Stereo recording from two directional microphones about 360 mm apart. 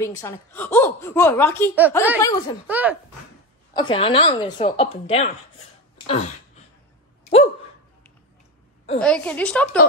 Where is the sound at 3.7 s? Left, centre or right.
Centre.